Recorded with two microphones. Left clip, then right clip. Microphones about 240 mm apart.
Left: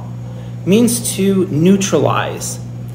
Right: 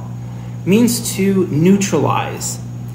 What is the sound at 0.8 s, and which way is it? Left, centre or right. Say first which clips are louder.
Speech: left 1 dB; left.